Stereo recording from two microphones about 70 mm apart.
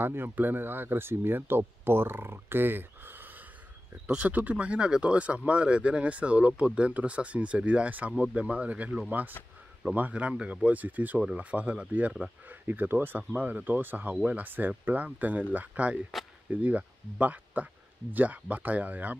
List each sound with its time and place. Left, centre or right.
0.0 s speech: right
4.1 s speech: centre
9.4 s speech: left
9.9 s speech: right